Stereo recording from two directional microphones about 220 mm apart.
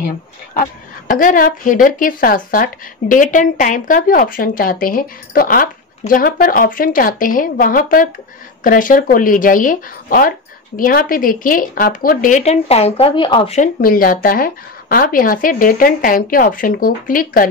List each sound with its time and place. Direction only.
0.6 s speech: 40° left (ahead or behind); by 13.6 s 25° left (ahead or behind)
13.6 s speech: 40° left (ahead or behind)